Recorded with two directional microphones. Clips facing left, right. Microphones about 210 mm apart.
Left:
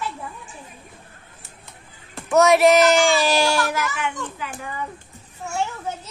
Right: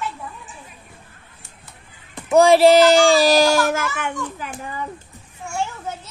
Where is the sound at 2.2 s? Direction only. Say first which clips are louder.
Right 3 dB; 30° right (ahead or behind); by 4.5 s 45° right (ahead or behind).